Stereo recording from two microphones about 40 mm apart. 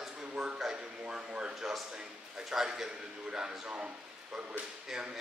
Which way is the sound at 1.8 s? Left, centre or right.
Right.